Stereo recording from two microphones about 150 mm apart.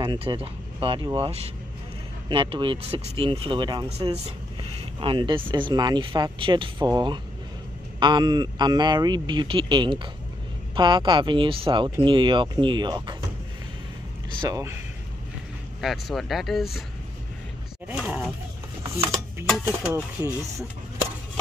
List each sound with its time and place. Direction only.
0.0 s speech: 30° right (ahead or behind)
14.4 s speech: 20° right (ahead or behind)
15.8 s speech: centre (ahead or behind)
17.9 s speech: 5° right (ahead or behind)
18.8 s a sound: 20° right (ahead or behind)
19.9 s speech: 20° right (ahead or behind)